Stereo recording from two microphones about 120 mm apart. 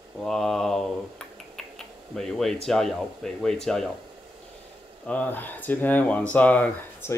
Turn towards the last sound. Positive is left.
turn(degrees=15)  # may be behind; listen again after turning